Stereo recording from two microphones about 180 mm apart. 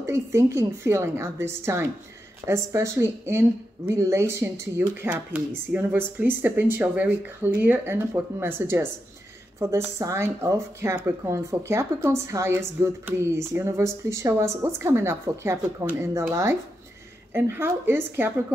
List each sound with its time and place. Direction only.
0.0 s a woman's voice: 15° right (ahead or behind)